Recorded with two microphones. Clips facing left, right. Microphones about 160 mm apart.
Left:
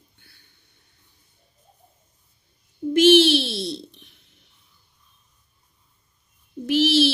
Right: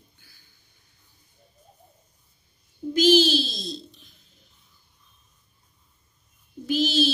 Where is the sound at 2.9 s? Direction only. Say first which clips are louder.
Left 4 dB; 75° left (ahead or behind).